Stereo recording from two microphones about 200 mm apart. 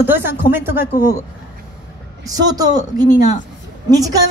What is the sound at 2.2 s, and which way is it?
Speech, 20° right (ahead or behind).